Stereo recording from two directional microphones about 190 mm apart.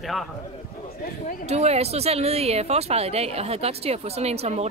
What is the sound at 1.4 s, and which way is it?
Speech, 35° right (ahead or behind).